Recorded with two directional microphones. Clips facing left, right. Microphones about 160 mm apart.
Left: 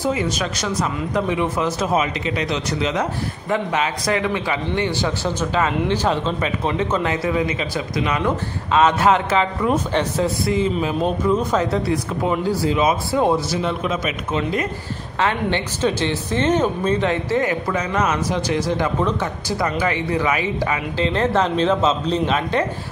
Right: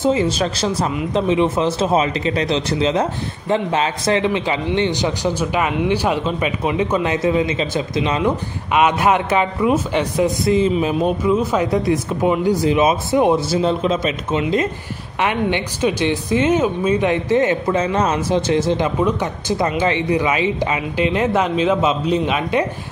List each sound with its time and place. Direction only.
0.0 s speech: 30° right (ahead or behind)
8.3 s speech: 15° right (ahead or behind)
11.0 s speech: 10° right (ahead or behind); by 14.4 s 30° right (ahead or behind)
15.1 s speech: 15° right (ahead or behind)
18.9 s speech: 10° right (ahead or behind)